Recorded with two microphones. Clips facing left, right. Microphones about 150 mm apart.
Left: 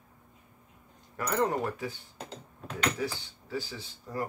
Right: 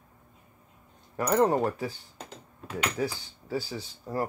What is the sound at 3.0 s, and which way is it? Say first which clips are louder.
Speech: right 3 dB; 40° right (ahead or behind).